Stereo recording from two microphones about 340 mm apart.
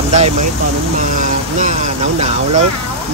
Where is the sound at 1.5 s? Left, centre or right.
Right.